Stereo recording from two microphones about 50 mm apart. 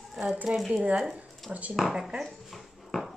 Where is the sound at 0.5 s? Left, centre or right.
Right.